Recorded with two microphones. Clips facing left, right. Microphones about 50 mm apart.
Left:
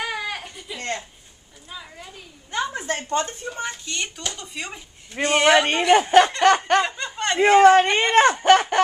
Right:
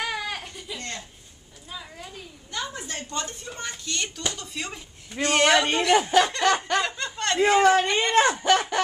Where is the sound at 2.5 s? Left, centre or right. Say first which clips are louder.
Left 6 dB; left.